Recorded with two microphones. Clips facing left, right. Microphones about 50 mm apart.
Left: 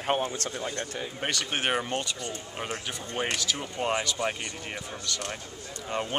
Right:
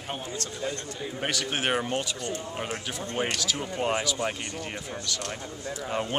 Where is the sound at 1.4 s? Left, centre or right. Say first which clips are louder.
Right 1 dB; centre.